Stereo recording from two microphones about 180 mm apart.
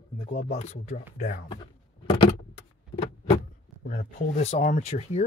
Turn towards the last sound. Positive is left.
turn(degrees=35)  # may be behind; listen again after turning